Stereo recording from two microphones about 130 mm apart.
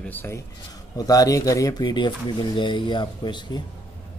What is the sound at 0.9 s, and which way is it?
Speech, 30° left (ahead or behind).